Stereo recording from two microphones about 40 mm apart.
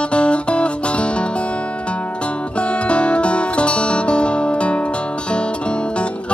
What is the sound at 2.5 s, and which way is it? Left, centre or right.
Music, left.